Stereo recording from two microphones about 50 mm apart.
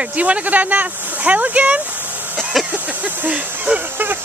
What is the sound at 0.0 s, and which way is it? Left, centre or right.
Speech, right.